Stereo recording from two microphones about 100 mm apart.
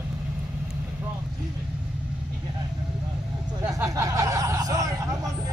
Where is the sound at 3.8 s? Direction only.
35° right (ahead or behind).